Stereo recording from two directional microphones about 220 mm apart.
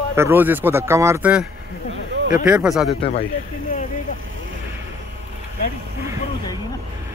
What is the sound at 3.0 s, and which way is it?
Speech, 25° left (ahead or behind).